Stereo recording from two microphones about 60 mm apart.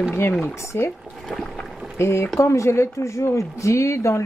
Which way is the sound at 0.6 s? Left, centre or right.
Left.